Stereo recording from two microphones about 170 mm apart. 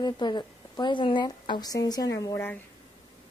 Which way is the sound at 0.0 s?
25° left (ahead or behind).